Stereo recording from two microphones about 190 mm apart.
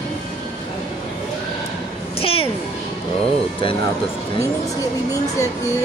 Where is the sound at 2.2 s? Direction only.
30° left (ahead or behind).